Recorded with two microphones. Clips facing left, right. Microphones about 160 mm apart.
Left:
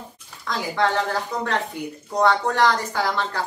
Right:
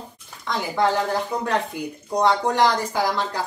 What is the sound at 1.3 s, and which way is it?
Speech, 10° right (ahead or behind).